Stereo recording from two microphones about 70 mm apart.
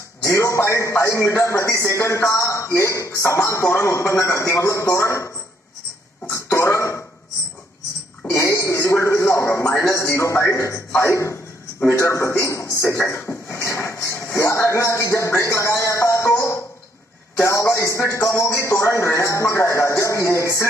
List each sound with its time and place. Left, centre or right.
0.2 s a man's voice: left
6.3 s throat clearing: left
8.3 s a man's voice: left